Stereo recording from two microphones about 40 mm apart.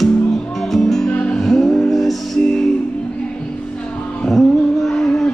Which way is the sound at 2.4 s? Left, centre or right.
Centre.